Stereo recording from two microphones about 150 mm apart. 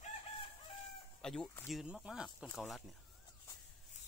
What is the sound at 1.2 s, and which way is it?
Speech, 5° left (ahead or behind).